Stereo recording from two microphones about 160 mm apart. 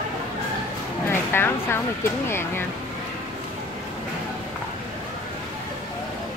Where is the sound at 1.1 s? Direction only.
15° left (ahead or behind).